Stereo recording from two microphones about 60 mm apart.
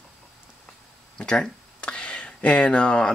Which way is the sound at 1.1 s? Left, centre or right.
Centre.